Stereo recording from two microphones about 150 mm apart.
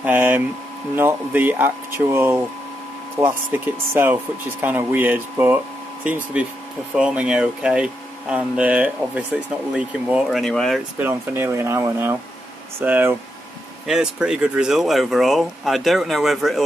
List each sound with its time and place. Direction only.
0.0 s speech: 15° right (ahead or behind)
3.5 s speech: 15° right (ahead or behind); by 10.8 s 5° left (ahead or behind)
11.0 s speech: 15° right (ahead or behind)